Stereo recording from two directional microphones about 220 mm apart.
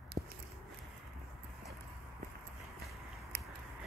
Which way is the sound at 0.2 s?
40° right (ahead or behind).